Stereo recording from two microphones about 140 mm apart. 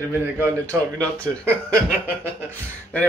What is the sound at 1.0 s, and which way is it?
Speech, 10° left (ahead or behind).